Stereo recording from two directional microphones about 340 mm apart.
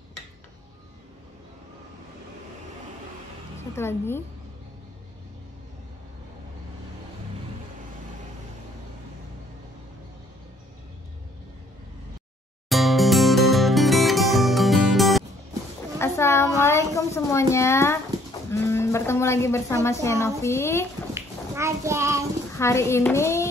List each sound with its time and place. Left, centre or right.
3.7 s a woman's voice: centre
12.6 s music: centre
16.0 s a sound: centre
18.5 s a woman's voice: centre
21.1 s bathtub: centre
22.6 s a woman's voice: centre